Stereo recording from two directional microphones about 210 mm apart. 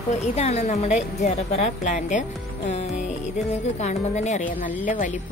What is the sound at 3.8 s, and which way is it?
A woman's voice, 35° left (ahead or behind).